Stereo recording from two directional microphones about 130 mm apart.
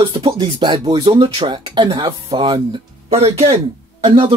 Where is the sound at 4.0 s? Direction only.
40° right (ahead or behind).